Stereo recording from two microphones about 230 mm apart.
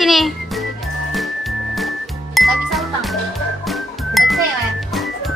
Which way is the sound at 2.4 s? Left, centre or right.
Centre.